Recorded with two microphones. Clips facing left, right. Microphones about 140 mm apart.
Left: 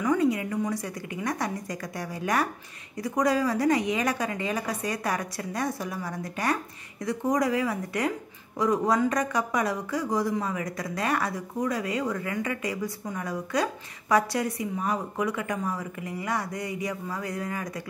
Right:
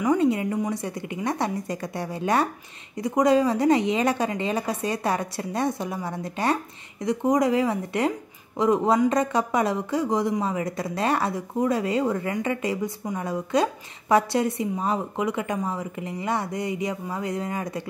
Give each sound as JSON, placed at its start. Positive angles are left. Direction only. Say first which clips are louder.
{"t": 0.0, "sound": "speech", "louder": "right 3 dB", "side_deg": -20}